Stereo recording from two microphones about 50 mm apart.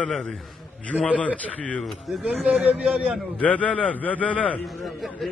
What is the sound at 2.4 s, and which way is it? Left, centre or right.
Speech, right.